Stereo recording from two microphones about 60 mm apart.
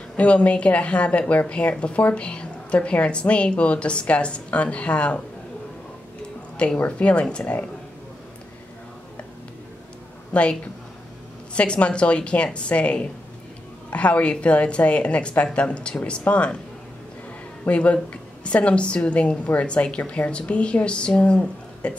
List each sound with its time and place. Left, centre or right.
0.1 s a woman's voice: left
6.5 s a woman's voice: centre
10.3 s a woman's voice: centre
17.6 s a woman's voice: left